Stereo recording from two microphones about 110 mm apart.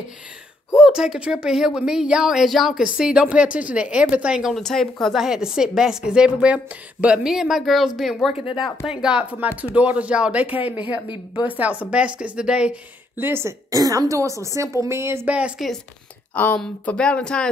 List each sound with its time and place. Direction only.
0.7 s a woman's voice: 5° right (ahead or behind)
11.1 s a woman's voice: 50° left (ahead or behind)
11.5 s speech: 15° right (ahead or behind)
13.2 s a woman's voice: 20° right (ahead or behind)
15.6 s a woman's voice: centre (ahead or behind)
16.3 s speech: 10° left (ahead or behind)